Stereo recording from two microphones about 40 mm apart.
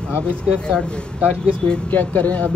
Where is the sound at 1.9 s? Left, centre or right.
Left.